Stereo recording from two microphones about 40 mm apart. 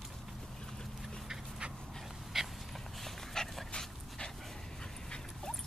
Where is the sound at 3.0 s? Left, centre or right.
Centre.